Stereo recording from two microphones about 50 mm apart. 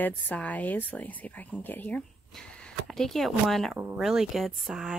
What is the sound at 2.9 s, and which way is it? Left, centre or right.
Speech, centre.